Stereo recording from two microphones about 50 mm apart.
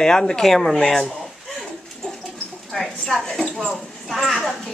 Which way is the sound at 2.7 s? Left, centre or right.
Centre.